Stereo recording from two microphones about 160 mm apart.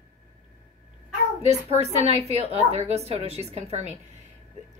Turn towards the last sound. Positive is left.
turn(degrees=-45)  # may be behind; listen again after turning